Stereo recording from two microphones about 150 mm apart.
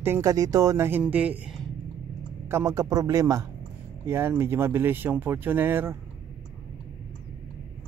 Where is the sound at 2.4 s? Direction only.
20° right (ahead or behind).